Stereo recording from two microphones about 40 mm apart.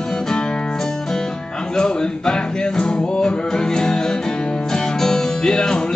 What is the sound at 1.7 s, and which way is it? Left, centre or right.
Music, centre.